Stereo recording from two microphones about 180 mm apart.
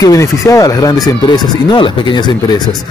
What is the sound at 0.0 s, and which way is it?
Speech, 20° left (ahead or behind).